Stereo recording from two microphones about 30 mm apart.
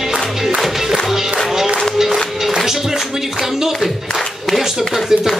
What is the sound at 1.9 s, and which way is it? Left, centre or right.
Music, centre.